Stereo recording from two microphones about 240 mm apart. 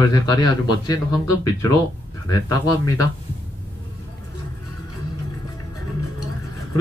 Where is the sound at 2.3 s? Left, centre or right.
Centre.